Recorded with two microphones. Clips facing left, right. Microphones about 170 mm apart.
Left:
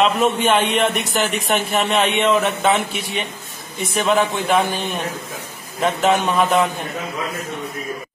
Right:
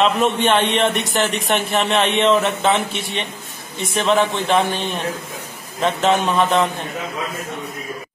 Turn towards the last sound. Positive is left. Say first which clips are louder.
# even
turn(degrees=5)  # may be behind; listen again after turning